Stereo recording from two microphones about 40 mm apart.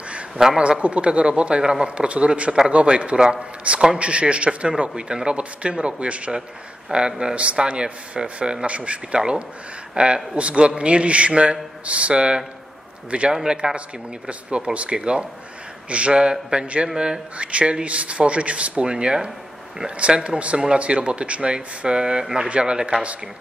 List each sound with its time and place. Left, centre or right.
0.6 s a man's voice: right
3.7 s a sound: right
4.0 s a man's voice: right
6.9 s a man's voice: right
8.6 s a man's voice: right
16.9 s speech: centre
17.4 s a man's voice: right